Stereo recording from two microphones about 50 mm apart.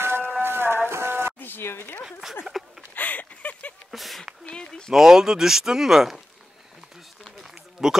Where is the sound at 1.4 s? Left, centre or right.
Left.